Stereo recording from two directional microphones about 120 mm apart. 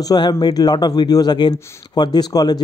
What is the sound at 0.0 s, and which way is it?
Speech, 35° left (ahead or behind).